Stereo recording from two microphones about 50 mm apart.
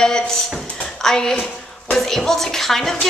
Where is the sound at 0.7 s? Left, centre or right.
Centre.